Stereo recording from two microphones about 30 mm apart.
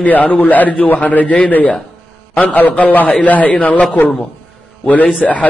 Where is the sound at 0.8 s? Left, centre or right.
Left.